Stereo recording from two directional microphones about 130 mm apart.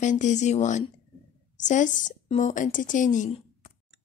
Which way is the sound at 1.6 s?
75° left (ahead or behind).